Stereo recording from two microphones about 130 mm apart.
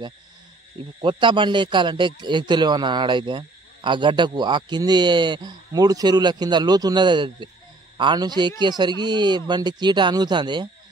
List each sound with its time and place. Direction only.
1.0 s a man's voice: 40° right (ahead or behind)